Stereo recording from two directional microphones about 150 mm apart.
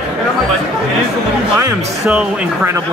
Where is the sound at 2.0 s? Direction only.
5° right (ahead or behind).